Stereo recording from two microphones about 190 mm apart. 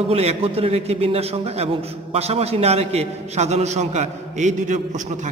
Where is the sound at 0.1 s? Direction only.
30° right (ahead or behind).